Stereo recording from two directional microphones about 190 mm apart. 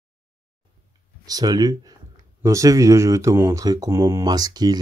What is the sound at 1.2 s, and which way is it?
Speech, 20° right (ahead or behind).